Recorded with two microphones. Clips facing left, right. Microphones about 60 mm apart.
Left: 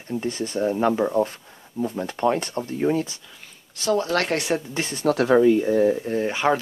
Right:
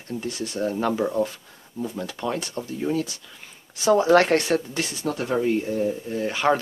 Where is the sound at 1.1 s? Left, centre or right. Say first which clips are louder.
Left 2 dB; left.